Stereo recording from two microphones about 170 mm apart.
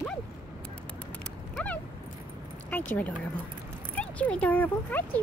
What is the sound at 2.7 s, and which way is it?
Speech, 10° left (ahead or behind).